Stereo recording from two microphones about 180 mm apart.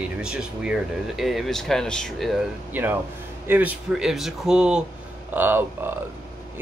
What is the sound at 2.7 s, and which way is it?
Speech, 10° right (ahead or behind).